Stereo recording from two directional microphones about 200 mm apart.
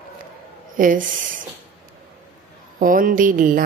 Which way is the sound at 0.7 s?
40° right (ahead or behind).